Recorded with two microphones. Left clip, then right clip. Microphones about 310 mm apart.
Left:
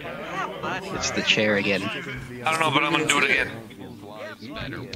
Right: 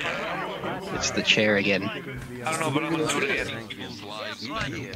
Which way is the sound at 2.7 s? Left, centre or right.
Left.